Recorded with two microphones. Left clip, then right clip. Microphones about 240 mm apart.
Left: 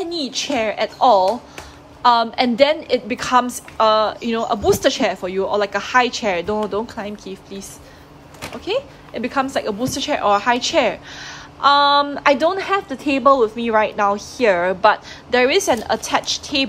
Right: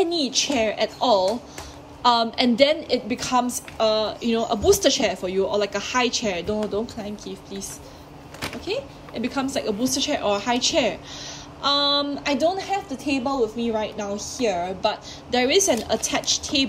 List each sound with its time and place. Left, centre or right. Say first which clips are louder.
0.0 s a woman's voice: right 2 dB; centre
13.2 s speech: left 12 dB; left
13.6 s a woman's voice: left 8 dB; left
14.1 s a woman's voice: left 7 dB; centre